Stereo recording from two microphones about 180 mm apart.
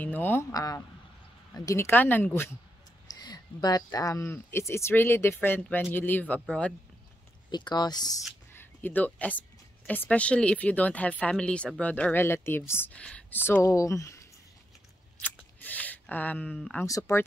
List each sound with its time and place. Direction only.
0.0 s speech: 10° left (ahead or behind)
7.5 s speech: 25° left (ahead or behind)
8.5 s speech: 10° left (ahead or behind)
15.2 s a sound: 10° left (ahead or behind)
16.8 s speech: 20° left (ahead or behind)